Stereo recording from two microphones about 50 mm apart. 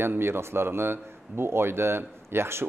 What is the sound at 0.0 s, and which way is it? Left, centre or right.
A man's voice, right.